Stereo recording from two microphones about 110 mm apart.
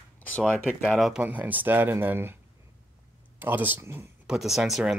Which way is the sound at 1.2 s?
15° right (ahead or behind).